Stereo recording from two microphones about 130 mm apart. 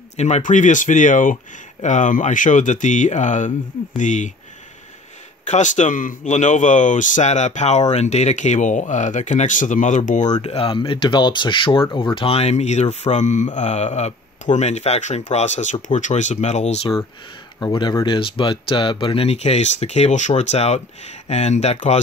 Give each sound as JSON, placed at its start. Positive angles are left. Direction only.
{"t": 0.2, "sound": "speech", "side_deg": 65}
{"t": 5.5, "sound": "speech", "side_deg": 70}
{"t": 17.6, "sound": "speech", "side_deg": 35}